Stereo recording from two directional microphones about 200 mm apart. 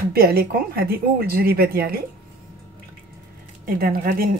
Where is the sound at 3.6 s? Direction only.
50° right (ahead or behind).